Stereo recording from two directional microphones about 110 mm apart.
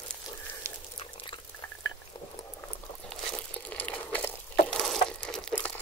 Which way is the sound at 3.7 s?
15° left (ahead or behind).